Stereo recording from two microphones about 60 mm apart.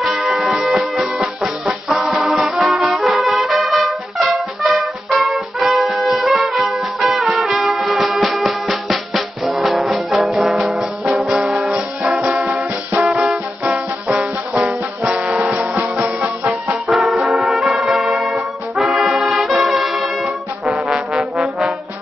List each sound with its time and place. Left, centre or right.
0.0 s music: centre
11.2 s brass instrument: centre
13.1 s music: centre
16.8 s music: centre
20.7 s brass instrument: centre
21.2 s trombone: centre